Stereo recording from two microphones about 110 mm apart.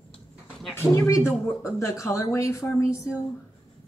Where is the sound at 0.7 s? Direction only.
25° left (ahead or behind).